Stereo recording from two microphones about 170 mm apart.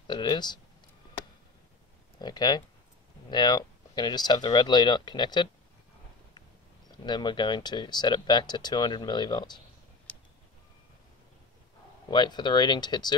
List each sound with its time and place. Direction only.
0.0 s speech: 25° left (ahead or behind)
2.1 s speech: 25° left (ahead or behind)
6.9 s speech: 25° left (ahead or behind)
10.1 s a sound: 5° left (ahead or behind)
12.1 s speech: 25° left (ahead or behind)